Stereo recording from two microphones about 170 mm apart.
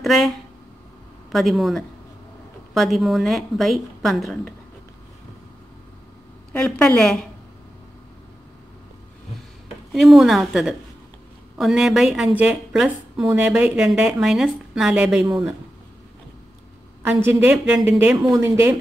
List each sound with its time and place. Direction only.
0.0 s speech: centre (ahead or behind)
1.3 s speech: centre (ahead or behind)
6.5 s speech: 5° left (ahead or behind)
9.9 s speech: centre (ahead or behind)
17.0 s a woman's voice: 10° right (ahead or behind)
18.3 s speech: 20° right (ahead or behind)